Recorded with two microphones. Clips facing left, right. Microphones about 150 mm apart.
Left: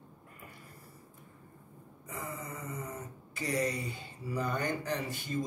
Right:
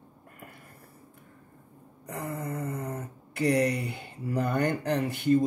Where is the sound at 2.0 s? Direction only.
65° right (ahead or behind).